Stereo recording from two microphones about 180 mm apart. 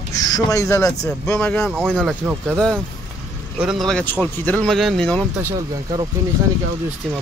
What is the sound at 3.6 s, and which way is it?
Speech, centre (ahead or behind).